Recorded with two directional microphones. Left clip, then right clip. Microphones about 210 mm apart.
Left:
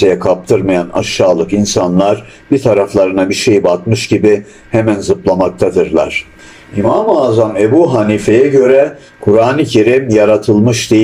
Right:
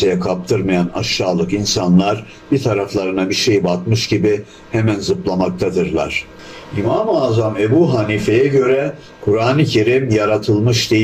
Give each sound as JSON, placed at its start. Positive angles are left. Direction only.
{"t": 0.1, "sound": "speech", "side_deg": 10}